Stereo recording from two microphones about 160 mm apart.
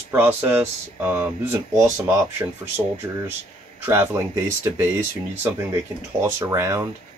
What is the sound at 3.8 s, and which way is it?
Speech, 15° right (ahead or behind).